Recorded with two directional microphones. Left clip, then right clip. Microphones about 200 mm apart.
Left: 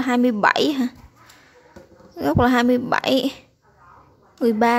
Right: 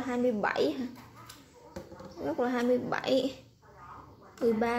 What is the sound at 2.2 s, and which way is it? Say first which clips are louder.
A woman's voice: left 12 dB; 40° left (ahead or behind).